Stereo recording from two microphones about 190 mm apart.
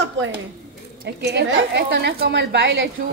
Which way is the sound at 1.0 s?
65° right (ahead or behind).